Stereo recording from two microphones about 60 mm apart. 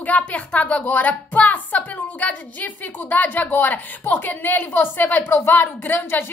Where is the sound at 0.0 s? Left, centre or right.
Left.